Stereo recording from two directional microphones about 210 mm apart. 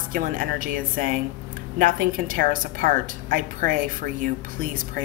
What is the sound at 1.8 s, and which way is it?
A woman's voice, 40° right (ahead or behind).